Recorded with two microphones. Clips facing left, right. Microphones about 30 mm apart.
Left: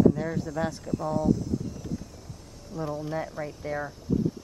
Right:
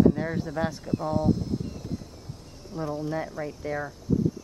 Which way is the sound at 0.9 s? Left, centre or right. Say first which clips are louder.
Even; right.